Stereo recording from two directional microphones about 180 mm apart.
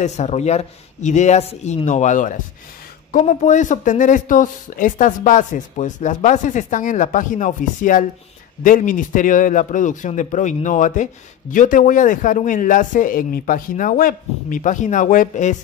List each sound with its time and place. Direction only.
0.0 s speech: 40° left (ahead or behind)